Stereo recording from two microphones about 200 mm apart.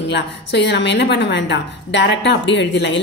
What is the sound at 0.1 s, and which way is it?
A woman's voice, 60° left (ahead or behind).